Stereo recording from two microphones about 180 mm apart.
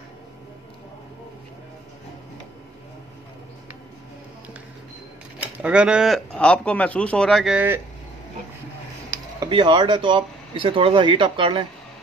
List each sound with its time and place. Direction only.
5.4 s speech: 5° right (ahead or behind)
9.4 s speech: 25° right (ahead or behind)